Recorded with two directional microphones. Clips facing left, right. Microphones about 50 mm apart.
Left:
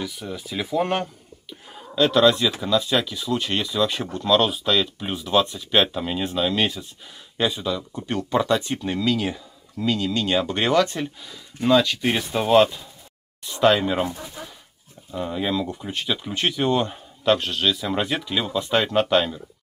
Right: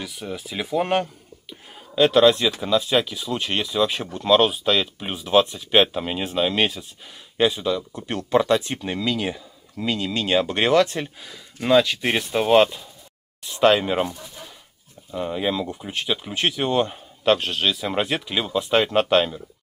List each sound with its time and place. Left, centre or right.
0.0 s speech: centre
13.5 s speech: centre
14.1 s speech: left
15.2 s speech: centre